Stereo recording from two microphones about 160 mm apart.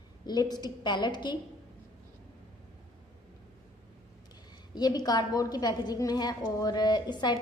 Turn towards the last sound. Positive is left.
turn(degrees=25)  # may be behind; listen again after turning